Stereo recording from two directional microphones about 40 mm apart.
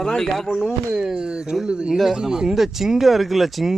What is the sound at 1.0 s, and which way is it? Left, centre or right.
Speech, centre.